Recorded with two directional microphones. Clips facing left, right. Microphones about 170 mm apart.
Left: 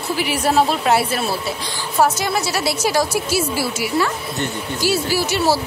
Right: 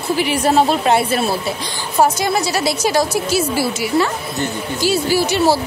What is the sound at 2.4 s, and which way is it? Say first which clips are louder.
A woman's voice: right 2 dB; 5° left (ahead or behind).